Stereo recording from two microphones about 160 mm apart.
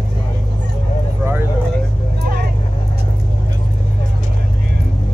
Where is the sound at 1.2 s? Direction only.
15° right (ahead or behind).